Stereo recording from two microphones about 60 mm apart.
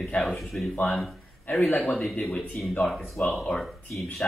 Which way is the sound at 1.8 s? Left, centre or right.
Centre.